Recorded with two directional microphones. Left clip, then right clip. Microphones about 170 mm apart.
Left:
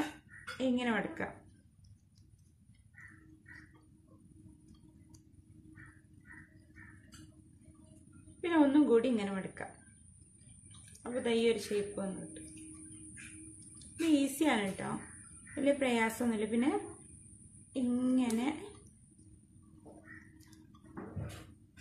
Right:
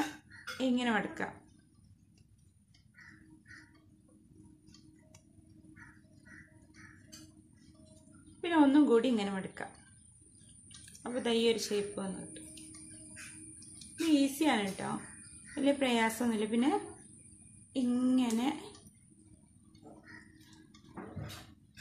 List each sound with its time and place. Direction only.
0.6 s speech: 20° right (ahead or behind)
8.4 s speech: 20° right (ahead or behind)
10.9 s speech: 20° right (ahead or behind)
13.7 s a woman's voice: 10° right (ahead or behind)
17.7 s child singing: 15° right (ahead or behind)